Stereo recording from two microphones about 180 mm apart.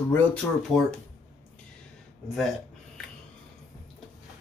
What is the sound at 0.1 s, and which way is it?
Speech, 5° left (ahead or behind).